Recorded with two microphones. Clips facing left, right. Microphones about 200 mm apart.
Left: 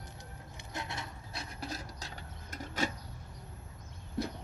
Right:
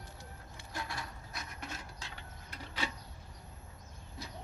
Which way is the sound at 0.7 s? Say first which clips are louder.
Left 1 dB; 25° left (ahead or behind).